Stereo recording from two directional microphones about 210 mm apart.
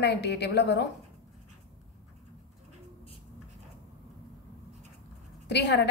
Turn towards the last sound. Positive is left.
turn(degrees=55)  # may be behind; listen again after turning